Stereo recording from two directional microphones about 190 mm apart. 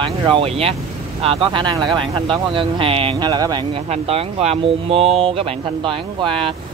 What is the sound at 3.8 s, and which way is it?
Speech, 35° right (ahead or behind).